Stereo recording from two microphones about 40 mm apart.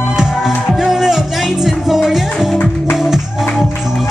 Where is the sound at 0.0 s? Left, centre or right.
Centre.